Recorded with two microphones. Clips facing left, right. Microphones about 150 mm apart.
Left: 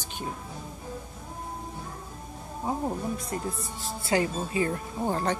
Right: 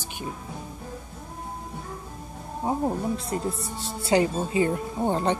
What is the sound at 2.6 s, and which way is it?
Speech, 25° right (ahead or behind).